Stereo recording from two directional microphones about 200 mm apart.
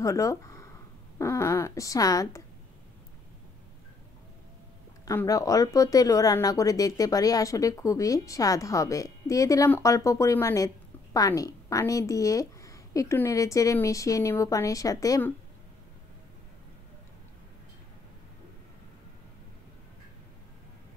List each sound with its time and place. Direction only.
0.0 s speech: 15° left (ahead or behind)
5.0 s speech: 15° left (ahead or behind)